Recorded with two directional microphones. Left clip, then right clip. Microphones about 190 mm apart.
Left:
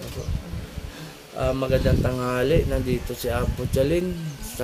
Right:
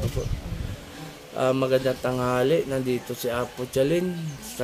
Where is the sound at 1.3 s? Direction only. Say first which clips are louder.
Right 2 dB; 30° right (ahead or behind).